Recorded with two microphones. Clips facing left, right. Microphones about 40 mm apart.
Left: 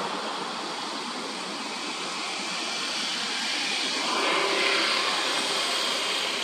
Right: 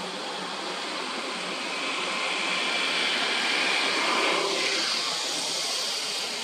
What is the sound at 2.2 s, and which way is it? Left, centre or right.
Vehicle, right.